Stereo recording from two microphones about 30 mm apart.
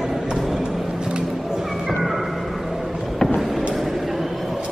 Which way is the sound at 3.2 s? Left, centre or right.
Centre.